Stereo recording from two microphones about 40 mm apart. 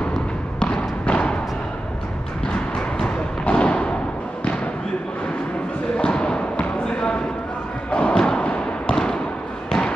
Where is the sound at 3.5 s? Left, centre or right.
Left.